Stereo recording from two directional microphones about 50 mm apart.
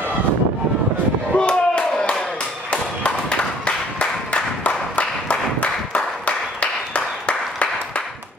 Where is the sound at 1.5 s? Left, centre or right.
Centre.